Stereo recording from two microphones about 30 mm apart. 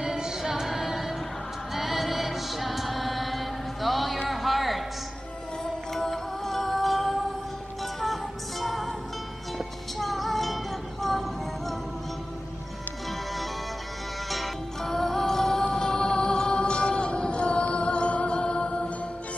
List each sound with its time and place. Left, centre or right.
0.0 s female singing: centre
0.4 s music: centre
4.3 s a sound: centre
5.9 s music: centre
9.9 s music: centre
14.8 s music: centre; by 18.9 s left